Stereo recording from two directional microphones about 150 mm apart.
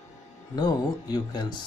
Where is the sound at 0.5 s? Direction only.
25° left (ahead or behind).